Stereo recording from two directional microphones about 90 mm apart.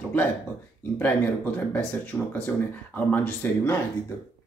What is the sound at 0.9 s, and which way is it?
Speech, 20° left (ahead or behind).